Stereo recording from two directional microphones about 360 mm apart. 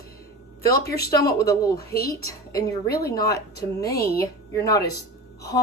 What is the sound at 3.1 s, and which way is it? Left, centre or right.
A woman's voice, centre.